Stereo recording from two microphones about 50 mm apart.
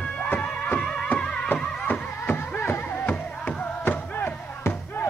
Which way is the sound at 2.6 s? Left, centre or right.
Left.